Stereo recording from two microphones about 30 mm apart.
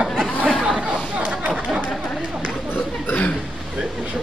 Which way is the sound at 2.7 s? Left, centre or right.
Left.